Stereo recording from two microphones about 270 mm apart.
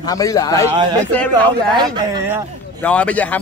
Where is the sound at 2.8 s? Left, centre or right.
Centre.